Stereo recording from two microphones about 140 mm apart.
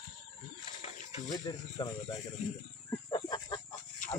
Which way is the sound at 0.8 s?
40° left (ahead or behind).